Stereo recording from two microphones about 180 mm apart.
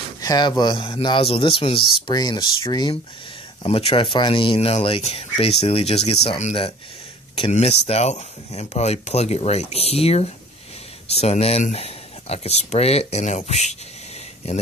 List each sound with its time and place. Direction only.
0.2 s speech: 20° left (ahead or behind)